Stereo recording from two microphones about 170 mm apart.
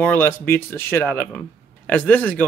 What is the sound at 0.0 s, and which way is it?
Speech, 10° left (ahead or behind).